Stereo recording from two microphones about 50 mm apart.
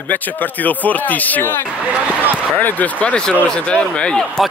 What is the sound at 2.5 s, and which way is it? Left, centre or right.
Speech, left.